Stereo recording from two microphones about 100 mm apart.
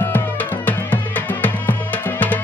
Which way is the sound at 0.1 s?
15° left (ahead or behind).